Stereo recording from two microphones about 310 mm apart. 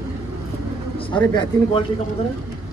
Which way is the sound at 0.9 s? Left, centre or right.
Centre.